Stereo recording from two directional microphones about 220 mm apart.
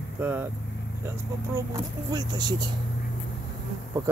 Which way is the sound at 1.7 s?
20° right (ahead or behind).